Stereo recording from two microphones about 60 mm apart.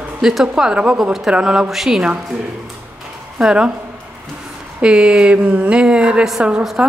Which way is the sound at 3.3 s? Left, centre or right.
Centre.